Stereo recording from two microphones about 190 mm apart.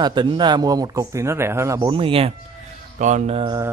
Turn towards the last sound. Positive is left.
turn(degrees=-30)  # may be behind; listen again after turning